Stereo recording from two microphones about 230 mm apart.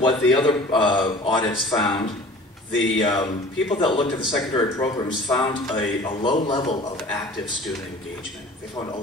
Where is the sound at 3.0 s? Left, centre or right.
Centre.